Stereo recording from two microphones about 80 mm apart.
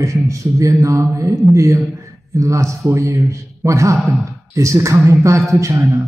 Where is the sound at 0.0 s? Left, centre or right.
Right.